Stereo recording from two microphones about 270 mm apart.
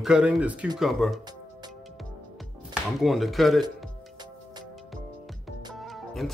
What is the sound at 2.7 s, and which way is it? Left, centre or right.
Speech, centre.